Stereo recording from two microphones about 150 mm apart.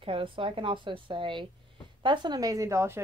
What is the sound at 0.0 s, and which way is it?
Speech, 35° right (ahead or behind).